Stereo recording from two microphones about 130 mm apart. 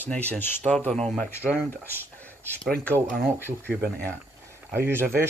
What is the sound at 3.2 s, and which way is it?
Speech, 15° right (ahead or behind).